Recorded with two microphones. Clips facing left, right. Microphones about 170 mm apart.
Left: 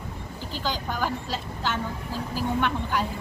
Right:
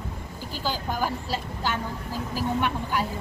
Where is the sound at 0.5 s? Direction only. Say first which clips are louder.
Right 1 dB; 10° right (ahead or behind).